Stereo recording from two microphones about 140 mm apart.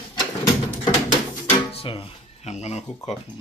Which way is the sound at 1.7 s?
40° left (ahead or behind).